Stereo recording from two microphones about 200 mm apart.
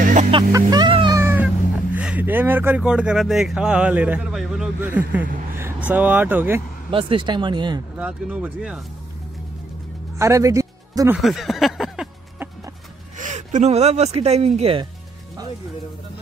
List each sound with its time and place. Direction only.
0.0 s vehicle: 40° right (ahead or behind)
0.3 s music: 20° right (ahead or behind)
1.2 s cat: 10° right (ahead or behind)
5.9 s speech: 10° right (ahead or behind)
6.9 s speech: 25° right (ahead or behind)
8.0 s speech: 5° right (ahead or behind)
10.1 s speech: 15° right (ahead or behind)
11.1 s a sound: centre (ahead or behind)
13.2 s speech: 40° right (ahead or behind)